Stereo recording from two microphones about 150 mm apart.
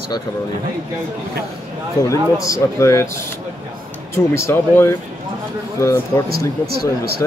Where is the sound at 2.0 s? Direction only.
20° left (ahead or behind).